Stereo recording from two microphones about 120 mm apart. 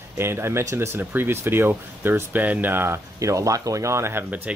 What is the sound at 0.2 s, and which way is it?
Speech, 20° right (ahead or behind).